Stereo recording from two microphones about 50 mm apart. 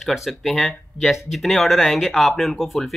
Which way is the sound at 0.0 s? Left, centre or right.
Centre.